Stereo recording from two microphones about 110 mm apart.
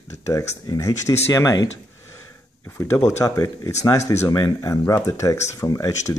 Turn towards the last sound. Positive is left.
turn(degrees=30)  # may be behind; listen again after turning